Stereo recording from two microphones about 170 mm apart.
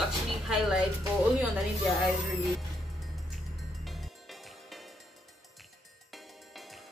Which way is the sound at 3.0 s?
Centre (ahead or behind).